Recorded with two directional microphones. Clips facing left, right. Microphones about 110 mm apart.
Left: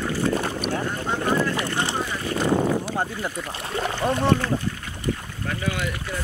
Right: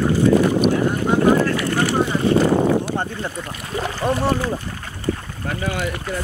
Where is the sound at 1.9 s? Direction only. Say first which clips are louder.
Right 10 dB; 25° right (ahead or behind).